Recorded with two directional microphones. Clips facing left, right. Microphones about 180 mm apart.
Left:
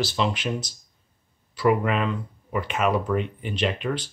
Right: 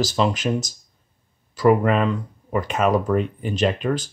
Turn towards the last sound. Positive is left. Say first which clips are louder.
# right 5 dB
turn(degrees=-45)  # may be behind; listen again after turning